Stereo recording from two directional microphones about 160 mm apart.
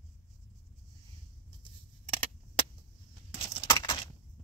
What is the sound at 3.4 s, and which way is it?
Keys jangling, 30° left (ahead or behind).